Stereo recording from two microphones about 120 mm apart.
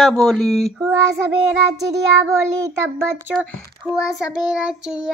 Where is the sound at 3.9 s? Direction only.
10° right (ahead or behind).